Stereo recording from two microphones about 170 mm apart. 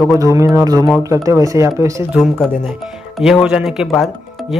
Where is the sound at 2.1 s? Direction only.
Centre (ahead or behind).